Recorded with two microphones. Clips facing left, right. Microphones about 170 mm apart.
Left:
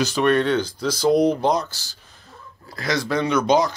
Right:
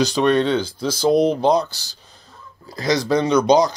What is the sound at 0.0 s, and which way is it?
Speech, 20° right (ahead or behind).